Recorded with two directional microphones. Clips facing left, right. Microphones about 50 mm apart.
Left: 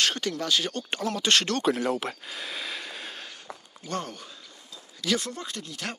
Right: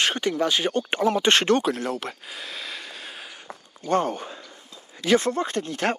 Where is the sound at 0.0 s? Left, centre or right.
Right.